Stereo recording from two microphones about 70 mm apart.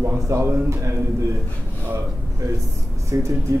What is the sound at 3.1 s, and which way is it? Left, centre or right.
Speech, right.